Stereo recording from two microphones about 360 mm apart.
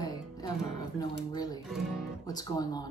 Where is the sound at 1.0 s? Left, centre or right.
Centre.